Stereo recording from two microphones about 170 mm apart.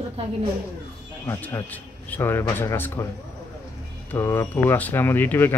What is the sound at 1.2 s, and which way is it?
A man's voice, 15° left (ahead or behind).